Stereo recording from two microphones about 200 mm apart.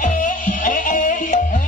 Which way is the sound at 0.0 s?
40° left (ahead or behind).